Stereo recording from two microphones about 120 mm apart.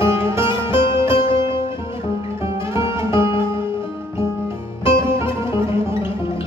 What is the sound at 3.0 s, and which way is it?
Music, 45° left (ahead or behind).